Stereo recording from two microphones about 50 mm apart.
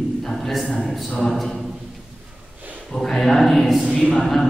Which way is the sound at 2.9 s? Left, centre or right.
Centre.